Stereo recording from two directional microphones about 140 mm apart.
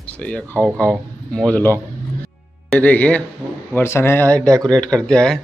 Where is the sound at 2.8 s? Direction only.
10° left (ahead or behind).